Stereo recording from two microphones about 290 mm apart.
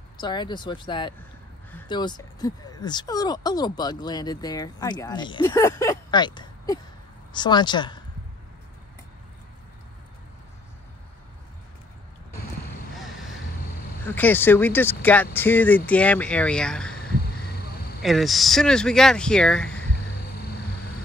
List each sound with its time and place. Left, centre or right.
0.2 s speech: centre
14.0 s speech: centre
18.0 s speech: centre